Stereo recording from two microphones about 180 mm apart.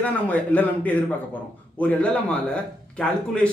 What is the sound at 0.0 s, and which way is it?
A man's voice, 10° left (ahead or behind).